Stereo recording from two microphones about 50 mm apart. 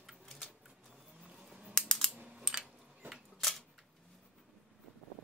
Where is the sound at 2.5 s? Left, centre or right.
Centre.